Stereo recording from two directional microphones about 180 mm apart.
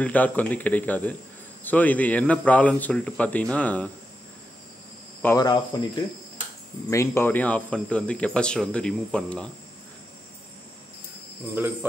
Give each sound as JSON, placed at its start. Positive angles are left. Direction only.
{"t": 0.0, "sound": "speech", "side_deg": 10}
{"t": 5.2, "sound": "cricket", "side_deg": 15}
{"t": 5.5, "sound": "speech", "side_deg": 20}
{"t": 11.5, "sound": "speech", "side_deg": -10}